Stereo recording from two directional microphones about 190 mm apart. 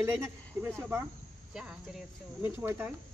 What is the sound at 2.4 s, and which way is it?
Speech, 10° right (ahead or behind).